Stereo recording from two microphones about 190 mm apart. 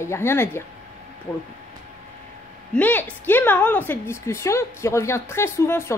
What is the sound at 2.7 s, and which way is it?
A woman's voice, 10° left (ahead or behind).